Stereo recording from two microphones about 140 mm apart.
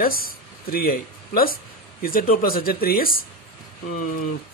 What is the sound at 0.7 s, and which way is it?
Speech, 90° left.